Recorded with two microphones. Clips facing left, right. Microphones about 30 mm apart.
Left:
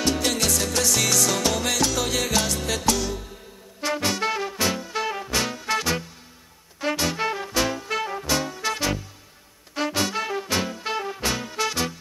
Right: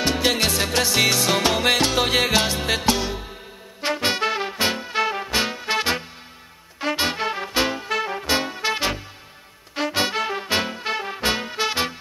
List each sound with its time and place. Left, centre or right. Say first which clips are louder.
0.0 s music: right 3 dB; right